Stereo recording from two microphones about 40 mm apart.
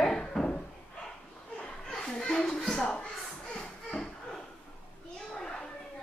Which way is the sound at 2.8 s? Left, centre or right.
Left.